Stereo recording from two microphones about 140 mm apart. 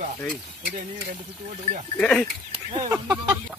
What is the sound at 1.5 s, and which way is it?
Speech, 60° right (ahead or behind).